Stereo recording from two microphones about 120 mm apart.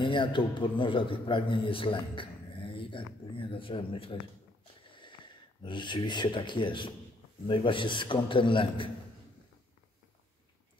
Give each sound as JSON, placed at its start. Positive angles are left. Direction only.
{"t": 0.0, "sound": "a man's voice", "side_deg": 45}